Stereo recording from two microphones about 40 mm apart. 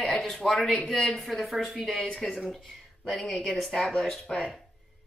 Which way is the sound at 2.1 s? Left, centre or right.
Centre.